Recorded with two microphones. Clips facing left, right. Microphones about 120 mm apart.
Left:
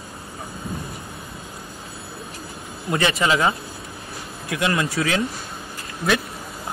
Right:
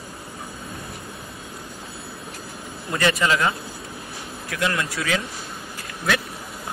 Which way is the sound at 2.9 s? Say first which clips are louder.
Left 1 dB; 25° left (ahead or behind).